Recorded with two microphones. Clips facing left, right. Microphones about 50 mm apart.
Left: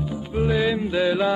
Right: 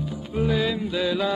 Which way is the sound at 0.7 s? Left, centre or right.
Left.